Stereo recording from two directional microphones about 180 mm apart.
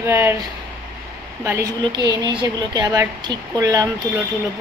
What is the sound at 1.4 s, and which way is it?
Speech, 15° right (ahead or behind).